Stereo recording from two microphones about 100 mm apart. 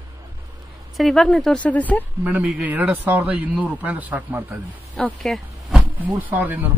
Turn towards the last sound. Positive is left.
turn(degrees=-15)  # may be behind; listen again after turning